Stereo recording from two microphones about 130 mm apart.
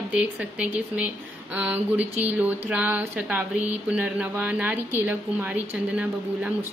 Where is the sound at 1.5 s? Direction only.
10° right (ahead or behind).